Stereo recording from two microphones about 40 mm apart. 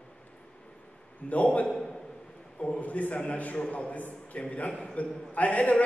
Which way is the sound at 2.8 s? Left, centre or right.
Left.